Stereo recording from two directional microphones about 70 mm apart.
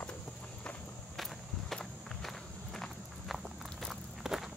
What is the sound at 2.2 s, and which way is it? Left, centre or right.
Walk, centre.